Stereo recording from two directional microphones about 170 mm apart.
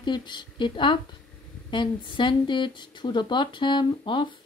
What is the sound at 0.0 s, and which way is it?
Speech, 25° left (ahead or behind).